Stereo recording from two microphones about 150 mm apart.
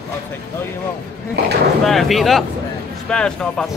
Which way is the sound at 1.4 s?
90° right.